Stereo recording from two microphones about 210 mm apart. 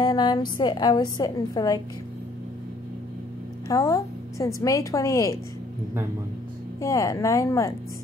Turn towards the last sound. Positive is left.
turn(degrees=15)  # may be behind; listen again after turning